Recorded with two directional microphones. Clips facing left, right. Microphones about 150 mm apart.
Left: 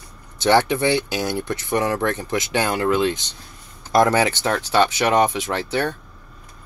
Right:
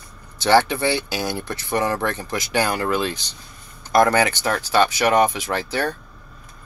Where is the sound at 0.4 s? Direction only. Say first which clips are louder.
Even; 20° left (ahead or behind).